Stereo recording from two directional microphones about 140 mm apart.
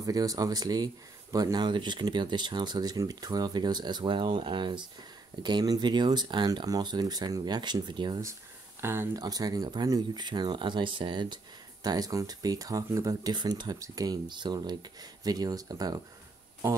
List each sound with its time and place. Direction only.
0.0 s speech: 25° right (ahead or behind)
8.8 s speech: 15° right (ahead or behind)
9.2 s speech: 25° right (ahead or behind)
16.6 s speech: 15° right (ahead or behind)